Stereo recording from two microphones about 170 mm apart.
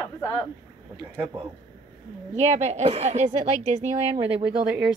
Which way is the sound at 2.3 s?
40° right (ahead or behind).